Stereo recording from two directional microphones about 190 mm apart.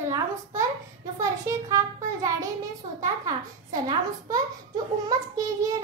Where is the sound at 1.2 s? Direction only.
15° right (ahead or behind).